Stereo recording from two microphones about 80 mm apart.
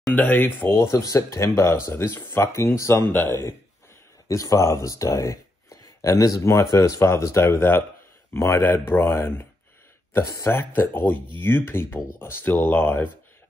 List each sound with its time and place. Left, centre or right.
0.1 s speech: left
3.1 s speech: left
4.3 s speech: left